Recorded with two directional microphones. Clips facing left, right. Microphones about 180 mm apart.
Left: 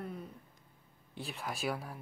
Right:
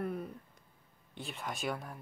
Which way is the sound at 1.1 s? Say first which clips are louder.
Left 1 dB; centre (ahead or behind).